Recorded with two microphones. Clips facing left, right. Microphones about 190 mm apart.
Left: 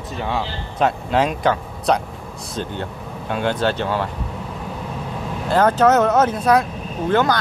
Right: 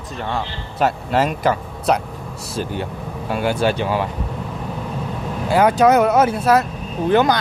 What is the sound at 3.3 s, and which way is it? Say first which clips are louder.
Speech: right 1 dB; 5° right (ahead or behind).